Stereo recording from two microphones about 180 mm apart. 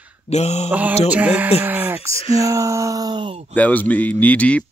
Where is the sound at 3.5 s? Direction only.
10° left (ahead or behind).